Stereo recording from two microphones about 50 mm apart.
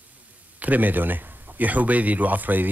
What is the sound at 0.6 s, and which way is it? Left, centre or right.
A man's voice, right.